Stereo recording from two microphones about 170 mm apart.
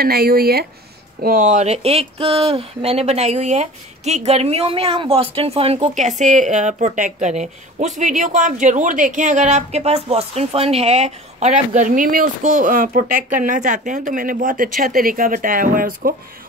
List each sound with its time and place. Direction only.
0.0 s speech: 65° right (ahead or behind)
1.2 s speech: 50° right (ahead or behind)